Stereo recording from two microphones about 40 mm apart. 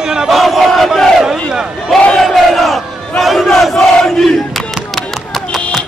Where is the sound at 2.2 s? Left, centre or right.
Centre.